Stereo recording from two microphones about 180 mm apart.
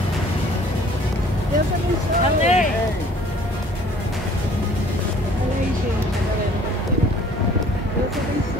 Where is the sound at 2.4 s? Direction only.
40° left (ahead or behind).